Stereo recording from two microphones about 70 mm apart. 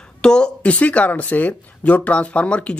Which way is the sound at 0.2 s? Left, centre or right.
Centre.